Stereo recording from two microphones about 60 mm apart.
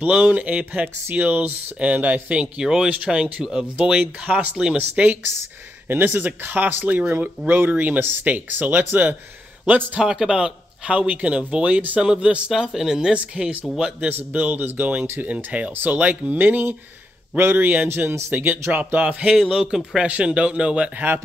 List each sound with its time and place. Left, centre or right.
0.0 s speech: right
5.9 s speech: right
9.9 s speech: centre
14.0 s speech: right
18.7 s speech: right